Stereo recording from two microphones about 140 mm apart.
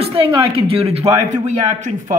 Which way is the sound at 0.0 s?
45° right (ahead or behind).